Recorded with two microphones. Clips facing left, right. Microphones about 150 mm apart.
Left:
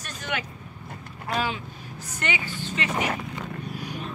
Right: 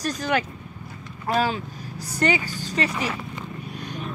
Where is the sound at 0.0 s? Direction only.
35° right (ahead or behind).